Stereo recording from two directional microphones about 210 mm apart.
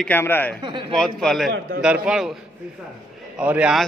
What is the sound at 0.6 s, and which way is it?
Speech, 20° right (ahead or behind).